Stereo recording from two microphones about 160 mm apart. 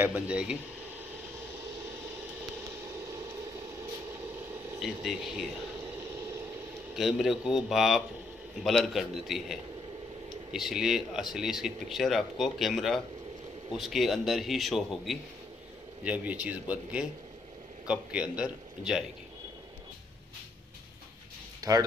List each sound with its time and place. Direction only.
0.0 s a man's voice: 10° right (ahead or behind)
4.8 s speech: centre (ahead or behind)
7.0 s a man's voice: centre (ahead or behind)
21.5 s music: 20° right (ahead or behind)